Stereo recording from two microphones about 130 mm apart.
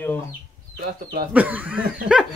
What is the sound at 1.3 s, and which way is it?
Speech, 10° right (ahead or behind).